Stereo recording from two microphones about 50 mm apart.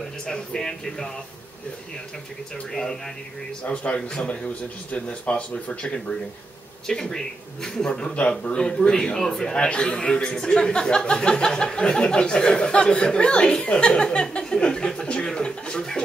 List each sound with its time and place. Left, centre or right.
0.3 s a man's voice: centre
2.7 s a man's voice: centre
3.6 s speech: left
6.9 s a man's voice: centre